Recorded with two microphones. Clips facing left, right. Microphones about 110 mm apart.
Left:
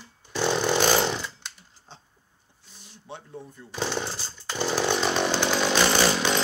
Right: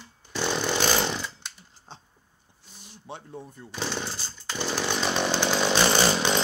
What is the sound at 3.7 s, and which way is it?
Chainsaw, 15° left (ahead or behind).